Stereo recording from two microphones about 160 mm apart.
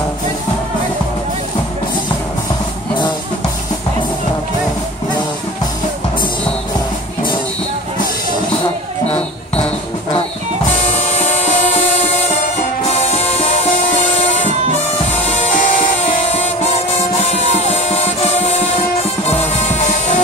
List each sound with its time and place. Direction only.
10.9 s music: 40° left (ahead or behind)
15.2 s music: 45° left (ahead or behind)
17.2 s music: 45° left (ahead or behind)